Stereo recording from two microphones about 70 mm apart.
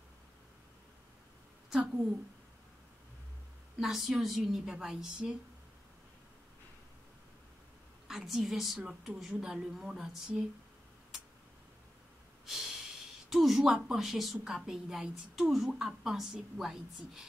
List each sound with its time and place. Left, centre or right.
3.8 s a woman's voice: centre
8.1 s a woman's voice: centre
12.4 s snort: centre
13.3 s a woman's voice: centre